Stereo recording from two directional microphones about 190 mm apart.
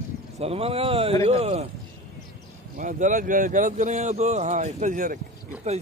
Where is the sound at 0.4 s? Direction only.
30° right (ahead or behind).